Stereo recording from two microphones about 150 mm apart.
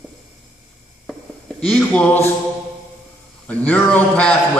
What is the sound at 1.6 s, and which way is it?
Speech, 5° left (ahead or behind).